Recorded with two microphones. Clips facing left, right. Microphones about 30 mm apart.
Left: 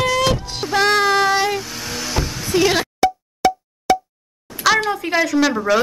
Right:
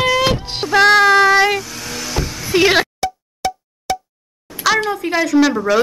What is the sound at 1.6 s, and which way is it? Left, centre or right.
Vehicle, centre.